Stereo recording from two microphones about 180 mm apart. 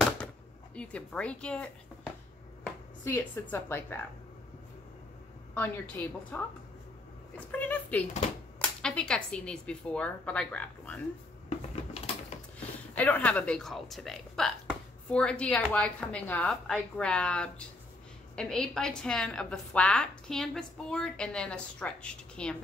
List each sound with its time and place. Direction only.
0.7 s a woman's voice: 5° left (ahead or behind)
5.5 s a woman's voice: 10° left (ahead or behind)
11.4 s a sound: 35° left (ahead or behind)
12.5 s a woman's voice: 10° left (ahead or behind)